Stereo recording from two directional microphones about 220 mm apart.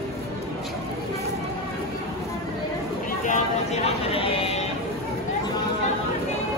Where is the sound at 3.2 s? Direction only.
30° left (ahead or behind).